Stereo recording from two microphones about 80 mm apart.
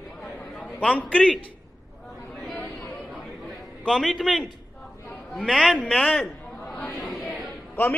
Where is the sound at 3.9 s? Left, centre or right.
Centre.